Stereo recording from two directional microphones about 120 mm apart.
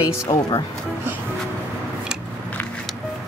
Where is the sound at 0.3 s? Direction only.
30° left (ahead or behind).